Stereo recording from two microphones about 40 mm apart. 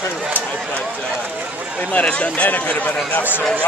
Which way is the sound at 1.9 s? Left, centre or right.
Left.